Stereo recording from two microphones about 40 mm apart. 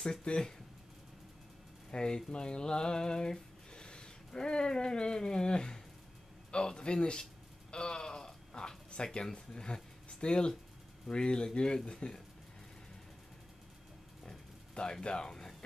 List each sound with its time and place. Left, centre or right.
0.3 s speech: centre
1.9 s speech: centre
2.3 s a sound: left
6.5 s speech: left
7.7 s a sound: left
11.1 s speech: left
14.7 s speech: left